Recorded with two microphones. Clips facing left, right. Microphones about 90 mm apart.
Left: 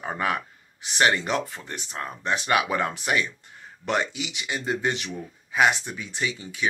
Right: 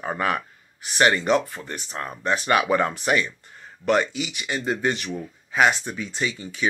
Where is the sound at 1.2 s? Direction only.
15° right (ahead or behind).